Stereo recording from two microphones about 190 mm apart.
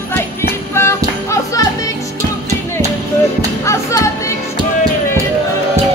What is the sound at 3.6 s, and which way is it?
Music, 15° left (ahead or behind).